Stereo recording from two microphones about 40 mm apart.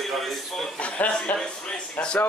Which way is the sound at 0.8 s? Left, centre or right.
Left.